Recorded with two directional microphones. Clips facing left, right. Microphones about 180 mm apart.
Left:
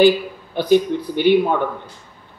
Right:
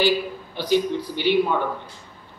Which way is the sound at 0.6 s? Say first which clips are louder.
Left 6 dB; 55° left (ahead or behind).